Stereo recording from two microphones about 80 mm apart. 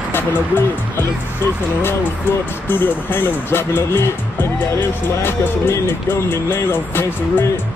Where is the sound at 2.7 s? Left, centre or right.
Left.